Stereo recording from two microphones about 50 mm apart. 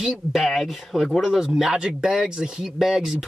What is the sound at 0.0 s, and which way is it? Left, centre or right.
Speech, centre.